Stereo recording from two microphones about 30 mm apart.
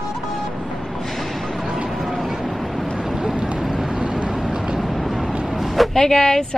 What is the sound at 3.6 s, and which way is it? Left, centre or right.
Vehicle, centre.